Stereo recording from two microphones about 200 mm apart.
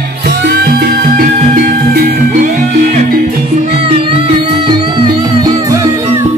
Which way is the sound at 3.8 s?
25° right (ahead or behind).